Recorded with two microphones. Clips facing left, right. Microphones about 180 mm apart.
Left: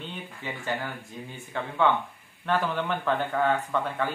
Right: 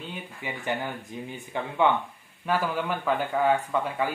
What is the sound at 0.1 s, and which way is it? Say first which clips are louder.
Speech: right 1 dB; 15° right (ahead or behind).